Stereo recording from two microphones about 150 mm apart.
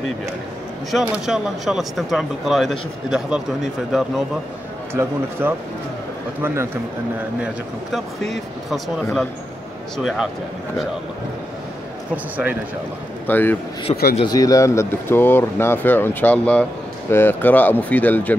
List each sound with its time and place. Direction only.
0.9 s speech: centre (ahead or behind)
5.0 s speech: 20° right (ahead or behind)
7.9 s speech: centre (ahead or behind)
9.9 s speech: centre (ahead or behind)
13.3 s speech: 15° left (ahead or behind)
13.9 s a man's voice: 35° left (ahead or behind)
14.2 s speech: 25° left (ahead or behind)